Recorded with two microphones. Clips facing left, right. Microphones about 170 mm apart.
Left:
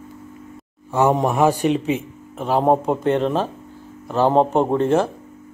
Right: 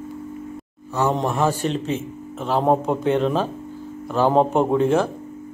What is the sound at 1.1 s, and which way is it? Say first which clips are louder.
Speech: left 4 dB; 10° left (ahead or behind).